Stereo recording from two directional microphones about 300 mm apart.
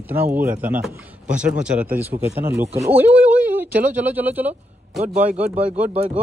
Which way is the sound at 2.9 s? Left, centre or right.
Centre.